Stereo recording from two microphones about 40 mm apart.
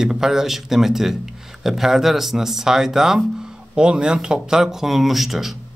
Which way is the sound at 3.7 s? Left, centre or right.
Right.